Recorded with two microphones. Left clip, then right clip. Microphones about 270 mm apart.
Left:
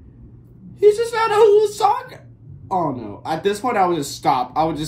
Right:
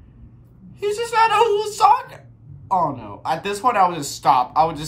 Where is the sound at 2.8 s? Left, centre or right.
Right.